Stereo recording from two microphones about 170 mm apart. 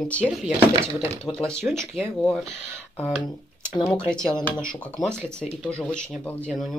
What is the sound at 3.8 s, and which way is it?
Speech, 5° left (ahead or behind).